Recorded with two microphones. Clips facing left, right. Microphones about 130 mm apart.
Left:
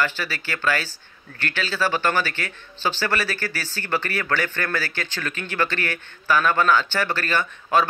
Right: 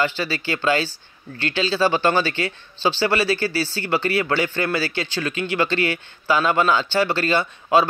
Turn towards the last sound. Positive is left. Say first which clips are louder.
# right 3 dB
turn(degrees=-15)  # may be behind; listen again after turning